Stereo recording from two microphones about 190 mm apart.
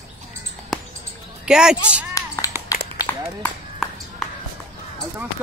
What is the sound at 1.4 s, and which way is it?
Speech, 5° right (ahead or behind).